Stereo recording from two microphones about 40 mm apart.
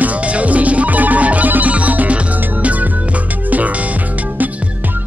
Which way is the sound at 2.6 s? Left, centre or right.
Right.